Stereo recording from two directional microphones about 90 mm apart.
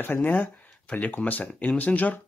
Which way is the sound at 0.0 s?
20° left (ahead or behind).